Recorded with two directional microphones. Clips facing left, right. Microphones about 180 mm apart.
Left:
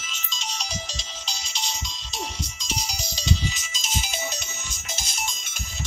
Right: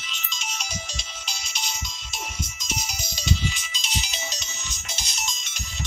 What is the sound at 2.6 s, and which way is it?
Music, 35° left (ahead or behind).